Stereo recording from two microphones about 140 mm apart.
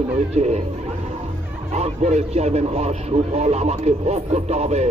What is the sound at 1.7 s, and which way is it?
Speech, 50° right (ahead or behind).